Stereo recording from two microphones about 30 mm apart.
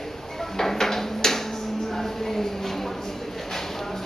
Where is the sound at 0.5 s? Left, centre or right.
Centre.